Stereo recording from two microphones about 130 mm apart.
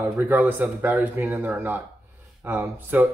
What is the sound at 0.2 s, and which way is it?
Speech, 15° right (ahead or behind).